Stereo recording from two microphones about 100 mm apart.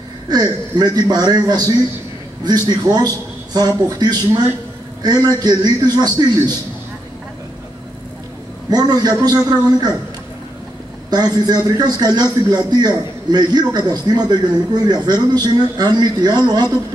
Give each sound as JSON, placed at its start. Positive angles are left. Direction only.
{"t": 0.3, "sound": "a man's voice", "side_deg": -45}
{"t": 8.6, "sound": "a man's voice", "side_deg": -45}
{"t": 11.1, "sound": "a man's voice", "side_deg": -45}